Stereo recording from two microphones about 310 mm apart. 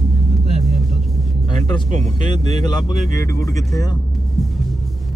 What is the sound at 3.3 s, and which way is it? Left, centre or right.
Speech, centre.